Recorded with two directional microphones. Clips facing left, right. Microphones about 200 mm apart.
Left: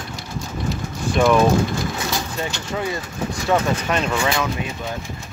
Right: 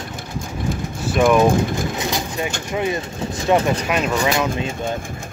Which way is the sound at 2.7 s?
20° right (ahead or behind).